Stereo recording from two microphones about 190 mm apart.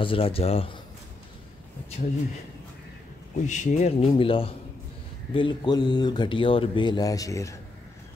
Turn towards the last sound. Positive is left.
turn(degrees=15)  # may be behind; listen again after turning